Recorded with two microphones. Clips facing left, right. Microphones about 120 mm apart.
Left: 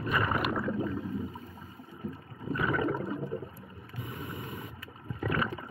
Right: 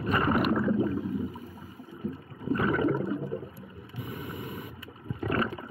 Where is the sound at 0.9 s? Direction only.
30° left (ahead or behind).